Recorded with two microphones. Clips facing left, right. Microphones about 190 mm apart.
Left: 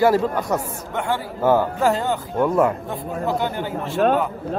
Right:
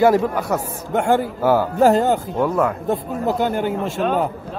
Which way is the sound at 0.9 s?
45° right (ahead or behind).